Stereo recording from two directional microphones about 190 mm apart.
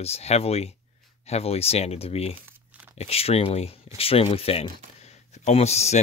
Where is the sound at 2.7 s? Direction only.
10° right (ahead or behind).